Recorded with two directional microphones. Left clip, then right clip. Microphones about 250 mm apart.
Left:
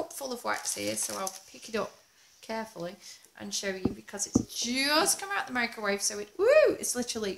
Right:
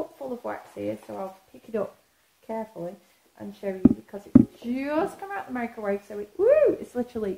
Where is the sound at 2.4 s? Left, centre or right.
Centre.